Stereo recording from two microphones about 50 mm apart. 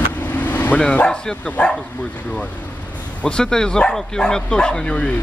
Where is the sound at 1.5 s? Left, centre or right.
Left.